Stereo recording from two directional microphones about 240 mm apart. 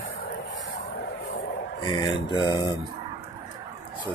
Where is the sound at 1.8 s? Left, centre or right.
Centre.